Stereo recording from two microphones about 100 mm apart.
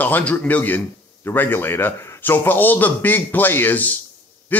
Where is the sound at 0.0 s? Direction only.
15° left (ahead or behind).